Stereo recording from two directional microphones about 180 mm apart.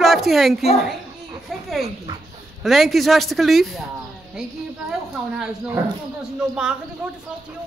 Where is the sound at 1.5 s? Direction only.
Centre (ahead or behind).